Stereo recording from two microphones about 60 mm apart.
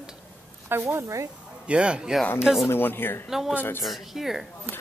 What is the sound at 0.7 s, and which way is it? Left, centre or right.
Speech, right.